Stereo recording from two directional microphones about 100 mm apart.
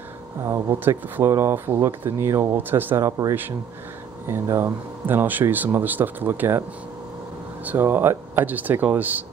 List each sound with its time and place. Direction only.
0.5 s speech: 20° right (ahead or behind)
7.6 s speech: 20° right (ahead or behind)